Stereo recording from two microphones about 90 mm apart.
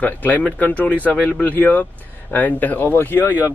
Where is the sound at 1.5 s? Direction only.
20° left (ahead or behind).